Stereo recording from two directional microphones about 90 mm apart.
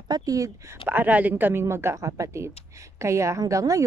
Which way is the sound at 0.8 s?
20° right (ahead or behind).